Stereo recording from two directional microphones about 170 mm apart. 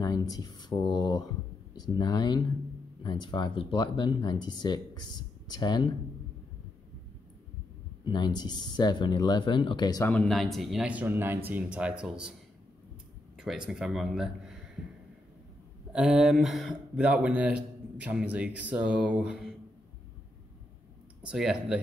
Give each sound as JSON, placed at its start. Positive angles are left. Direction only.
{"t": 0.0, "sound": "speech", "side_deg": 20}
{"t": 8.0, "sound": "speech", "side_deg": 25}
{"t": 10.0, "sound": "speech", "side_deg": 5}
{"t": 13.4, "sound": "speech", "side_deg": 0}
{"t": 15.9, "sound": "speech", "side_deg": -5}
{"t": 21.2, "sound": "speech", "side_deg": -5}